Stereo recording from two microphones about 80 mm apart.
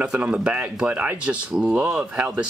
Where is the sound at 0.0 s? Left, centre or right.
Centre.